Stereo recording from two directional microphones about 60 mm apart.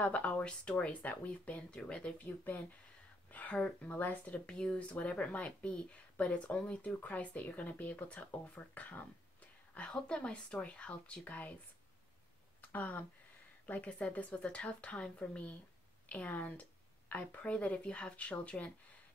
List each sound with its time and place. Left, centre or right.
0.0 s speech: left
4.5 s speech: centre
9.8 s speech: centre
12.6 s speech: left